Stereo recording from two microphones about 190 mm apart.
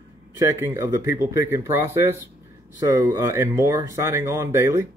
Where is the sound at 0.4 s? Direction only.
15° right (ahead or behind).